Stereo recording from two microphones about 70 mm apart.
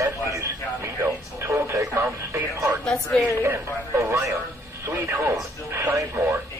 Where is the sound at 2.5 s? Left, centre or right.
Right.